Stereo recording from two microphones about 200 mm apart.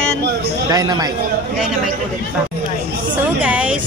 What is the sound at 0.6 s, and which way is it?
Speech, 20° right (ahead or behind).